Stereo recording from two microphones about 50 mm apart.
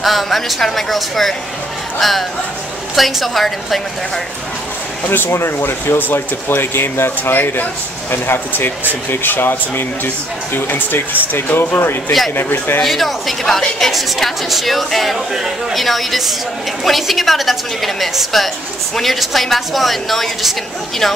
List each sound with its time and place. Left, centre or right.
0.0 s a woman's voice: centre
5.0 s speech: left
12.8 s a woman's voice: centre